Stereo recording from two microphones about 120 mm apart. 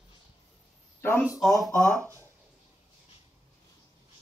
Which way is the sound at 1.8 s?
15° left (ahead or behind).